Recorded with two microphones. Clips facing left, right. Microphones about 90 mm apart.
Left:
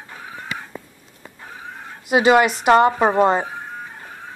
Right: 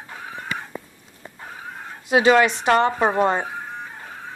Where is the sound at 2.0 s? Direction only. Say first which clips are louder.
Left 1 dB; 5° left (ahead or behind).